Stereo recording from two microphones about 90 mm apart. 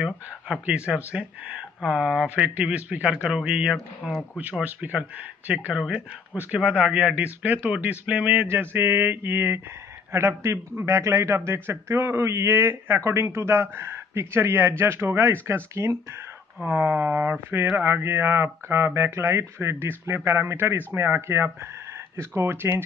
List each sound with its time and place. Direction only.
0.0 s speech: 10° right (ahead or behind)
4.4 s a man's voice: 20° right (ahead or behind)
16.6 s a man's voice: 20° right (ahead or behind)